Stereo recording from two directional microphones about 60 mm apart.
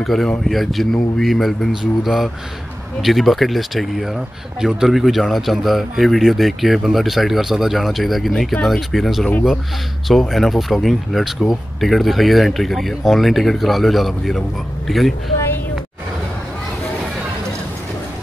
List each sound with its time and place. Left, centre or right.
0.0 s speech: centre